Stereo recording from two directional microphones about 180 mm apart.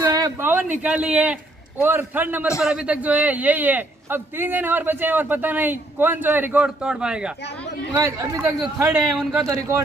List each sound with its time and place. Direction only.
0.1 s a sound: 15° right (ahead or behind)
0.8 s a man's voice: 5° right (ahead or behind)
7.9 s a man's voice: 15° right (ahead or behind)
8.8 s a man's voice: centre (ahead or behind)
9.4 s speech: 20° right (ahead or behind)